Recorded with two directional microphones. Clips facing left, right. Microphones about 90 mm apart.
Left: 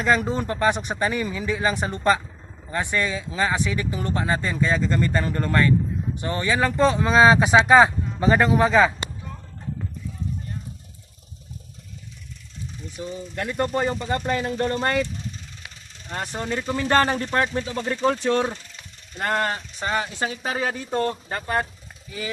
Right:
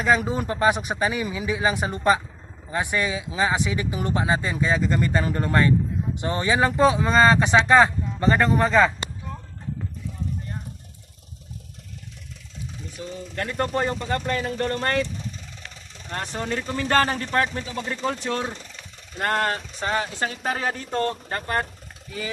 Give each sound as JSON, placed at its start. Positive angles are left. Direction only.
{"t": 0.0, "sound": "speech", "side_deg": -5}
{"t": 6.9, "sound": "speech", "side_deg": 0}
{"t": 12.9, "sound": "speech", "side_deg": 5}
{"t": 15.6, "sound": "speech", "side_deg": 5}
{"t": 17.6, "sound": "speech", "side_deg": 40}
{"t": 19.1, "sound": "speech", "side_deg": 0}